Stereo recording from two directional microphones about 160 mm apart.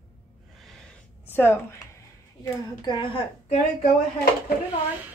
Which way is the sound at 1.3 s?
15° left (ahead or behind).